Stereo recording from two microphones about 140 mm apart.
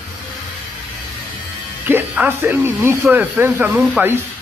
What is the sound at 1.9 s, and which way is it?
Speech, 15° right (ahead or behind).